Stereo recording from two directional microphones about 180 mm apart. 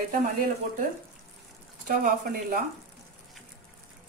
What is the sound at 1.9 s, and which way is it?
Speech, 50° right (ahead or behind).